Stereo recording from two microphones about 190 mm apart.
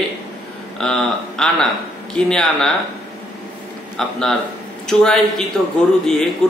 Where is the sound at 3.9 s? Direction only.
5° left (ahead or behind).